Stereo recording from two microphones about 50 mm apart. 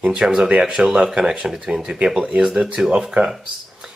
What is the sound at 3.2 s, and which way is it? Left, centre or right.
Speech, right.